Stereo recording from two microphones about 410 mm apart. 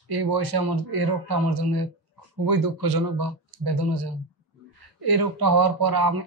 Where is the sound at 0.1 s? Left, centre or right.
Right.